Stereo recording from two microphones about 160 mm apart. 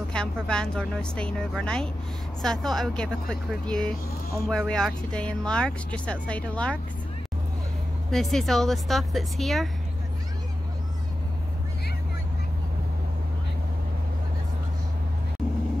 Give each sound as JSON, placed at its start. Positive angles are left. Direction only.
{"t": 0.1, "sound": "a woman's voice", "side_deg": 5}
{"t": 8.1, "sound": "a woman's voice", "side_deg": 0}